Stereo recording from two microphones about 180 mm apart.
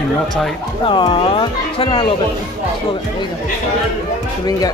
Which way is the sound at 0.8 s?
25° left (ahead or behind).